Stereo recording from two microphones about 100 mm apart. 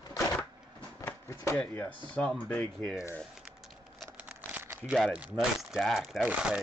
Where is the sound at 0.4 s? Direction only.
15° left (ahead or behind).